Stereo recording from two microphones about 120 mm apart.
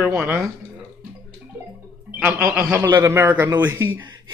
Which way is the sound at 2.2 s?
20° right (ahead or behind).